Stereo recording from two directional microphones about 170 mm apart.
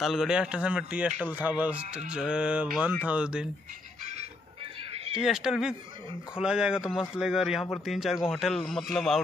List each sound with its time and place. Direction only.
0.0 s speech: centre (ahead or behind)
4.0 s music: 40° right (ahead or behind)
5.1 s speech: 5° right (ahead or behind)